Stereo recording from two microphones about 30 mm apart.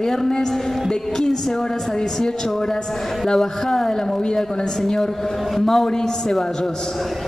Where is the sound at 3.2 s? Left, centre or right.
Centre.